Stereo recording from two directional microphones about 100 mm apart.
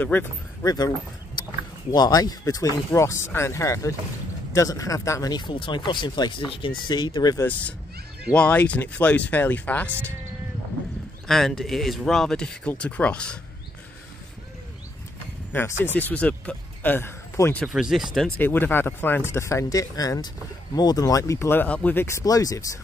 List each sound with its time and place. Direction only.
0.0 s speech: 20° left (ahead or behind)
0.7 s speech: 40° left (ahead or behind)
7.4 s speech: 15° left (ahead or behind)
11.2 s speech: centre (ahead or behind)
15.5 s speech: 25° left (ahead or behind)
17.6 s speech: 5° right (ahead or behind)
18.4 s speech: 20° left (ahead or behind)
22.0 s speech: 35° left (ahead or behind)